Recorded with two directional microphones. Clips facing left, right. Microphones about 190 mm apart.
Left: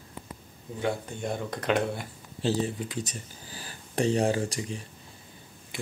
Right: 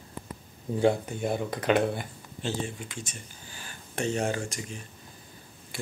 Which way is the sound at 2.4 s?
35° left (ahead or behind).